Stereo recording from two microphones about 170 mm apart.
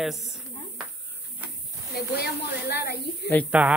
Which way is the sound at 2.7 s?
70° left (ahead or behind).